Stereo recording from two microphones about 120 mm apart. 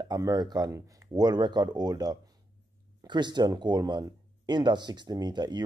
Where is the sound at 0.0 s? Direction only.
30° right (ahead or behind).